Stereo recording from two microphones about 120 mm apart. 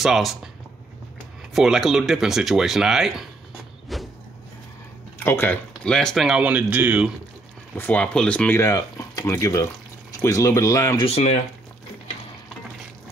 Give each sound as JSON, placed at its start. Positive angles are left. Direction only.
{"t": 0.0, "sound": "speech", "side_deg": 0}
{"t": 1.5, "sound": "speech", "side_deg": -5}
{"t": 3.9, "sound": "vehicle", "side_deg": 0}
{"t": 5.2, "sound": "speech", "side_deg": 20}
{"t": 5.9, "sound": "speech", "side_deg": 5}
{"t": 7.7, "sound": "speech", "side_deg": 15}
{"t": 8.5, "sound": "speech", "side_deg": 25}
{"t": 11.1, "sound": "speech", "side_deg": 60}